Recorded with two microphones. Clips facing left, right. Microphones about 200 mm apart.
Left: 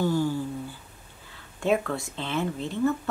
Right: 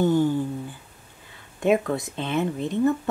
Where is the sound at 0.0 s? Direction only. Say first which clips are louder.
Right 5 dB; 20° right (ahead or behind).